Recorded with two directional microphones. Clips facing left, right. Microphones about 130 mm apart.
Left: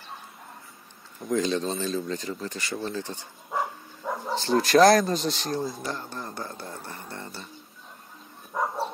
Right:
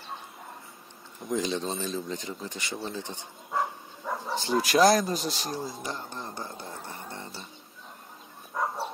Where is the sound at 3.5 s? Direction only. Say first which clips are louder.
Even; 10° left (ahead or behind).